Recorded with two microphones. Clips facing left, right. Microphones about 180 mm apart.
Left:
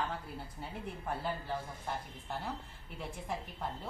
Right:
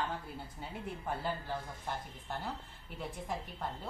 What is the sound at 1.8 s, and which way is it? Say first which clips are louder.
A woman's voice: even; centre (ahead or behind).